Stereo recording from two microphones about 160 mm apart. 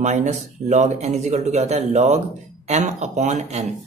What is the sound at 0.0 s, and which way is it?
Speech, 45° right (ahead or behind).